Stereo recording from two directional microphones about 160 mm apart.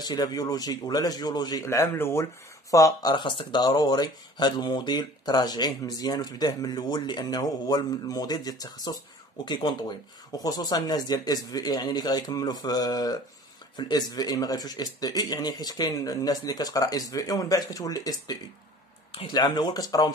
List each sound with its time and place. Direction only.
0.0 s speech: 25° left (ahead or behind)